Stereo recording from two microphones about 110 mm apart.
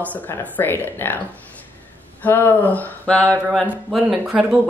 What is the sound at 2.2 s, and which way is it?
A woman's voice, 20° left (ahead or behind).